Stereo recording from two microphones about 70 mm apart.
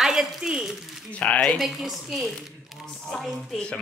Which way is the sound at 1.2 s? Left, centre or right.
Centre.